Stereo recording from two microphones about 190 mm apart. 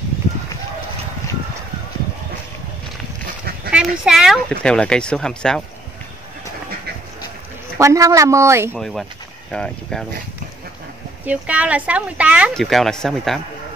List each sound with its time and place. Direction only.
3.7 s speech: 5° right (ahead or behind)
7.8 s speech: 15° right (ahead or behind)
8.7 s speech: centre (ahead or behind)
11.2 s speech: 5° right (ahead or behind)